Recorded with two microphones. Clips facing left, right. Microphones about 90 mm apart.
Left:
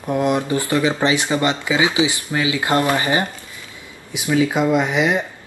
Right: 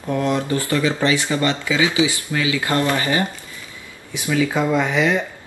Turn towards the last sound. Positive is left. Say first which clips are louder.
# even
turn(degrees=20)  # may be behind; listen again after turning